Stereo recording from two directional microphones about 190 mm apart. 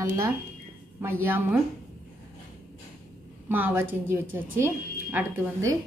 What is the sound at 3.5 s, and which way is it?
A woman's voice, 10° right (ahead or behind).